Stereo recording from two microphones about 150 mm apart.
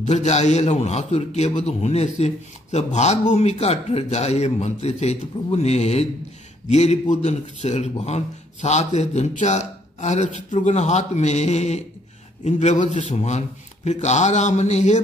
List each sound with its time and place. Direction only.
0.0 s a man's voice: 50° left (ahead or behind)